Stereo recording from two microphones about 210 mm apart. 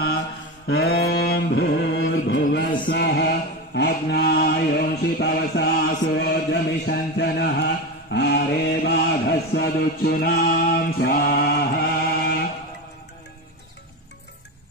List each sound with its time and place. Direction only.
0.7 s mantra: 50° left (ahead or behind)